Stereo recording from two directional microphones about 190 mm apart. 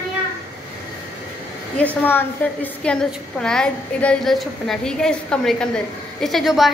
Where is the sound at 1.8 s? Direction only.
10° left (ahead or behind).